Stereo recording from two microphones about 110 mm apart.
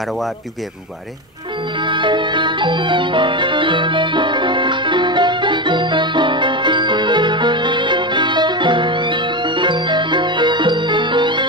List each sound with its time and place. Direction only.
1.8 s music: 45° right (ahead or behind)